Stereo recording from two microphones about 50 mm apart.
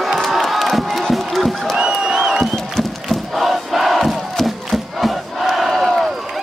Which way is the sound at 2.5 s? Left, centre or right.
Centre.